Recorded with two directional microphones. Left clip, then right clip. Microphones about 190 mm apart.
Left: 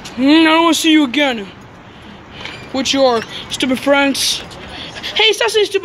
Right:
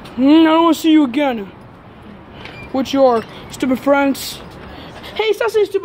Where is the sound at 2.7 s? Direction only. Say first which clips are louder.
Even; 15° right (ahead or behind).